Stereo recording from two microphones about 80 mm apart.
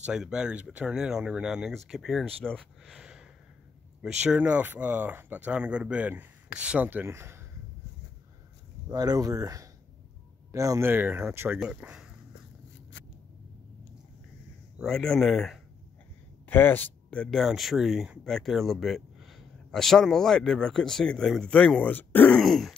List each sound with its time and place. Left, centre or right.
0.0 s speech: centre
7.1 s speech: right
8.8 s speech: right
10.9 s speech: right
11.6 s speech: centre
14.8 s a man's voice: centre
16.4 s speech: left
17.1 s speech: centre
17.4 s a man's voice: centre
18.2 s a man's voice: centre; by 22.3 s left
22.3 s a man's voice: centre